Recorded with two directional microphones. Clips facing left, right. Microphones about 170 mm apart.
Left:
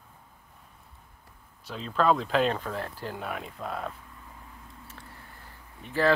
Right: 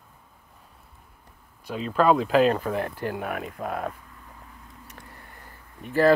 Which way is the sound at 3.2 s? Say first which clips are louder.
Right 5 dB; 55° right (ahead or behind).